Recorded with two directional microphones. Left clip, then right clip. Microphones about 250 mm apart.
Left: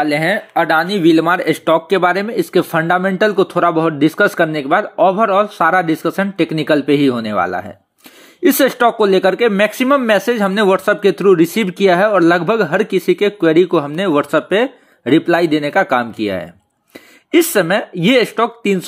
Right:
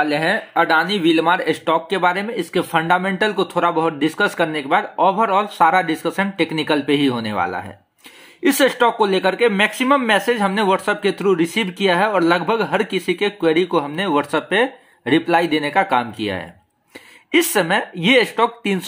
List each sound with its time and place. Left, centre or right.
0.0 s speech: centre